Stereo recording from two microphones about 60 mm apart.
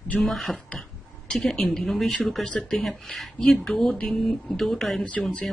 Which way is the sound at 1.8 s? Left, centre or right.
Centre.